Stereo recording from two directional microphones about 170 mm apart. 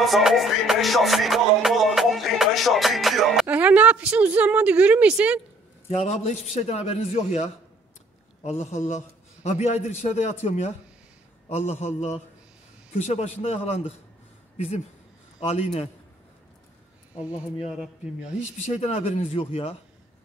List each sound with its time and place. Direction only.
0.0 s music: centre (ahead or behind)
5.9 s a man's voice: 40° left (ahead or behind)
15.4 s a man's voice: 35° left (ahead or behind)
17.6 s speech: 5° right (ahead or behind)
18.6 s a man's voice: 40° left (ahead or behind)